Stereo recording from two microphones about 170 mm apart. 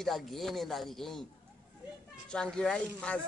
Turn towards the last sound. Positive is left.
turn(degrees=5)  # may be behind; listen again after turning